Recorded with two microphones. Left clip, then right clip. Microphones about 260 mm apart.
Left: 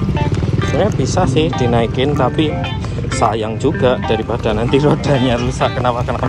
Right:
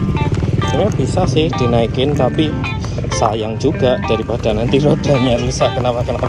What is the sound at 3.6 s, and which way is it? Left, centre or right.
Speech, centre.